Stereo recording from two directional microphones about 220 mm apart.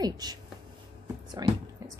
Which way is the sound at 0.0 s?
20° right (ahead or behind).